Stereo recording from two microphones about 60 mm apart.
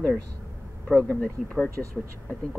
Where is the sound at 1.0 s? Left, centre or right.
Left.